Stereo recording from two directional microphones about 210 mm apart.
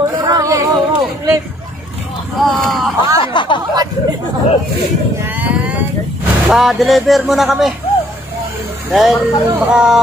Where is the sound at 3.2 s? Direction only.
25° left (ahead or behind).